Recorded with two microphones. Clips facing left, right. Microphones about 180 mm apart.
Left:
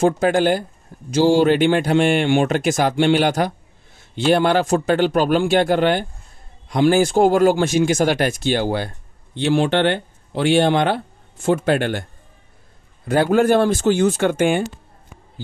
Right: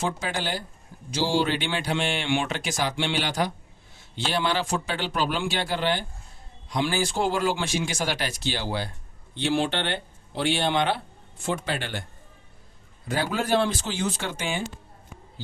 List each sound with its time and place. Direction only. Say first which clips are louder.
0.0 s speech: left 13 dB; 50° left (ahead or behind)